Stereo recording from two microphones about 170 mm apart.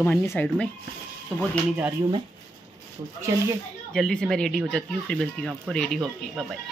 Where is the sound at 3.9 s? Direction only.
5° left (ahead or behind).